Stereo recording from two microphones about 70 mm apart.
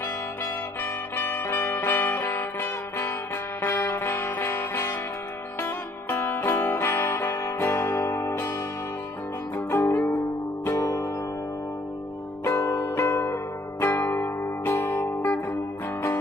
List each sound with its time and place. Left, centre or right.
1.1 s music: left
9.8 s music: left
10.7 s music: left
12.4 s music: left
12.8 s zither: left
14.9 s music: left